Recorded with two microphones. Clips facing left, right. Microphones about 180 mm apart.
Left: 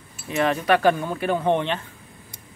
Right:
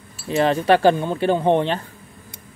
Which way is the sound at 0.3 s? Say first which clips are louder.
Right 4 dB; 30° right (ahead or behind).